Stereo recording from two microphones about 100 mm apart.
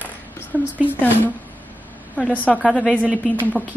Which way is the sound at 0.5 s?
20° right (ahead or behind).